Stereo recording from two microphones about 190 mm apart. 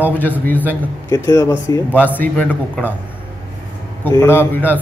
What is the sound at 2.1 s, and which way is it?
Speech, 5° left (ahead or behind).